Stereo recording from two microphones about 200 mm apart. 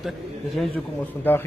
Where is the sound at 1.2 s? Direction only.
10° left (ahead or behind).